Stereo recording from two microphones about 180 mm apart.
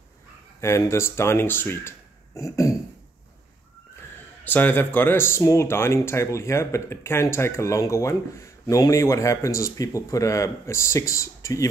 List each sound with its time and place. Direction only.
0.6 s speech: 15° left (ahead or behind)
4.5 s speech: 10° left (ahead or behind)